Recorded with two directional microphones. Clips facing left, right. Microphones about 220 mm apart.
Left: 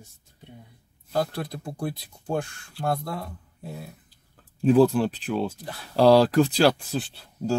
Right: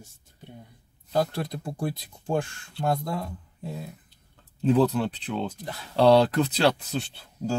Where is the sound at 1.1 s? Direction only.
25° right (ahead or behind).